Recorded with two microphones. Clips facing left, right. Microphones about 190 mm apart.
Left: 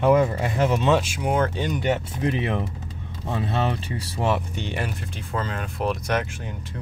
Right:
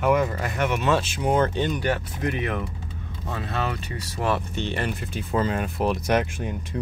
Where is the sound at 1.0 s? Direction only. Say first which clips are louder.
Right 1 dB; 10° left (ahead or behind).